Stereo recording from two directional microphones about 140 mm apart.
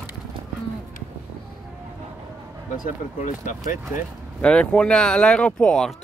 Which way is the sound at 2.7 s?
70° left (ahead or behind).